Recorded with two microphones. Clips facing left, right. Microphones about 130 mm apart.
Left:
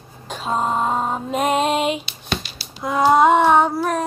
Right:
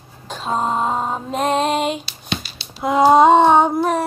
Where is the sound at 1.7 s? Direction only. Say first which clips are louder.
Even; 40° right (ahead or behind).